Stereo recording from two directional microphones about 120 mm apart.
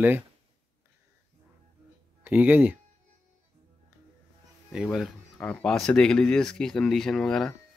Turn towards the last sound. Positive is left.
turn(degrees=5)  # may be behind; listen again after turning